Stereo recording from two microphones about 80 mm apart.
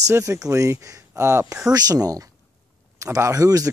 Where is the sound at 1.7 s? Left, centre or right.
Right.